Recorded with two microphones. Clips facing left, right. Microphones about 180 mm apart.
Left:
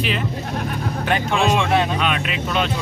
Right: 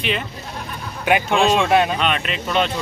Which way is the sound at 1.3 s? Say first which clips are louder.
Right 2 dB; centre (ahead or behind).